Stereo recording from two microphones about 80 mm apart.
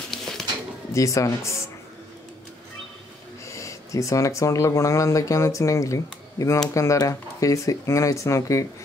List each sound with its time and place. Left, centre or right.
0.1 s a sound: centre
0.9 s speech: left
3.4 s speech: left